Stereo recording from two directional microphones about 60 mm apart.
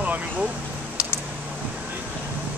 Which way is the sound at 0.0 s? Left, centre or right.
Right.